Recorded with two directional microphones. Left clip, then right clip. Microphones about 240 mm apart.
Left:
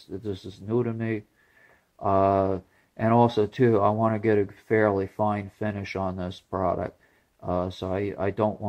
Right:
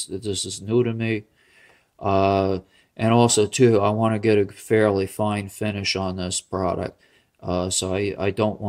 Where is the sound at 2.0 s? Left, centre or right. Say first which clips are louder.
Right 2 dB; right.